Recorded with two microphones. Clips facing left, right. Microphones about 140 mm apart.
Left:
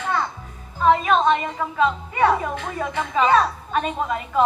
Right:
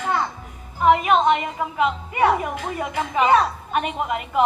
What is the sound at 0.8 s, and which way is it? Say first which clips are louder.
A woman's voice: right 1 dB; 15° right (ahead or behind).